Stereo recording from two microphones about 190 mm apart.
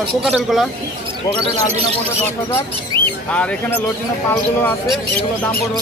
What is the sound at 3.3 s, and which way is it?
Speech, 5° left (ahead or behind).